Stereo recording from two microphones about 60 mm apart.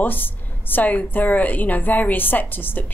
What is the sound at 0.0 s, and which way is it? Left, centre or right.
A woman's voice, left.